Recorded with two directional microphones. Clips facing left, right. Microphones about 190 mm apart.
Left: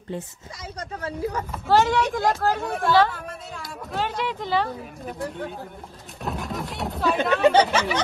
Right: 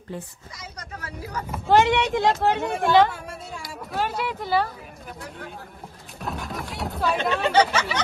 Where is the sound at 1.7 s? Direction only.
20° right (ahead or behind).